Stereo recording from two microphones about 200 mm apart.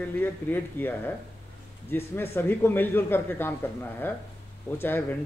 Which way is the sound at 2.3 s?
10° left (ahead or behind).